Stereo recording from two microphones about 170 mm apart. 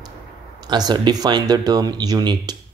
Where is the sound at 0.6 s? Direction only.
25° right (ahead or behind).